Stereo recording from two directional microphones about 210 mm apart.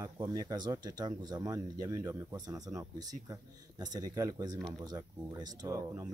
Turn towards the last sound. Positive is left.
turn(degrees=-15)  # may be behind; listen again after turning